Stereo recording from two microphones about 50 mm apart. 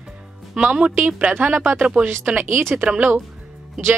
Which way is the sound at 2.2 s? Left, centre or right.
Right.